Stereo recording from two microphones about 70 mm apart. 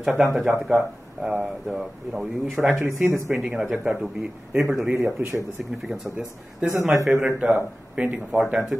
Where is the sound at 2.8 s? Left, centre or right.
Right.